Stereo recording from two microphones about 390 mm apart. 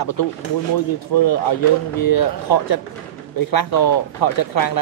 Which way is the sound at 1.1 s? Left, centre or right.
Left.